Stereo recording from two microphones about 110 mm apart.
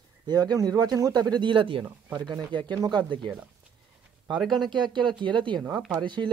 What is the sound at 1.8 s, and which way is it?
Speech, 20° right (ahead or behind).